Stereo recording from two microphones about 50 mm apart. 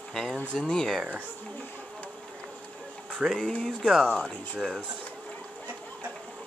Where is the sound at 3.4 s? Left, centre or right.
Centre.